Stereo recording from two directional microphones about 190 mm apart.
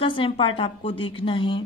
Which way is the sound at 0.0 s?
25° left (ahead or behind).